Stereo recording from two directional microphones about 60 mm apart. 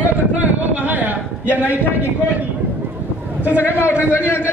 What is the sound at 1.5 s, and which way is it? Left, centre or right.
Speech, right.